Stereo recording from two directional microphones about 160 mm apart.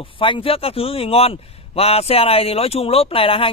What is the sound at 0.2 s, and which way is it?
Speech, 35° left (ahead or behind).